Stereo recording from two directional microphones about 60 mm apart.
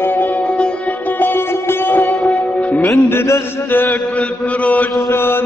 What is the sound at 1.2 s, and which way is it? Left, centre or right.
Music, left.